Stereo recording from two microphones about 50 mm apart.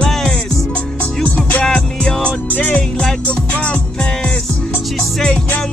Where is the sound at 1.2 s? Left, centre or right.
Left.